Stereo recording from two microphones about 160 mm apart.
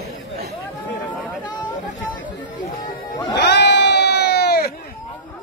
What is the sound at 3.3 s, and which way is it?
Crowd, 90° left.